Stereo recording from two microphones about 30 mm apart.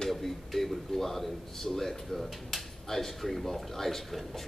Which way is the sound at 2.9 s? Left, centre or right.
Centre.